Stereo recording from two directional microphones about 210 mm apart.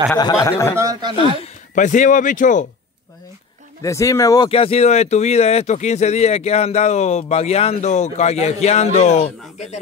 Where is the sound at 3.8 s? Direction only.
15° left (ahead or behind); by 9.8 s 35° left (ahead or behind).